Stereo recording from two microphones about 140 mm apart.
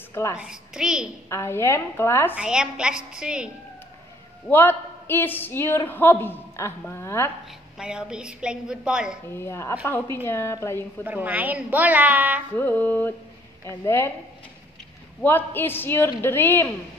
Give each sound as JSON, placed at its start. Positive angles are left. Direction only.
{"t": 0.1, "sound": "a child's voice", "side_deg": 20}
{"t": 0.4, "sound": "a woman's voice", "side_deg": -5}
{"t": 1.3, "sound": "a woman's voice", "side_deg": 20}
{"t": 2.3, "sound": "a woman's voice", "side_deg": -5}
{"t": 4.5, "sound": "a woman's voice", "side_deg": 15}
{"t": 7.8, "sound": "a woman's voice", "side_deg": -5}
{"t": 9.4, "sound": "a woman's voice", "side_deg": 20}
{"t": 11.1, "sound": "a woman's voice", "side_deg": -10}
{"t": 12.5, "sound": "a woman's voice", "side_deg": 15}
{"t": 15.2, "sound": "a woman's voice", "side_deg": 15}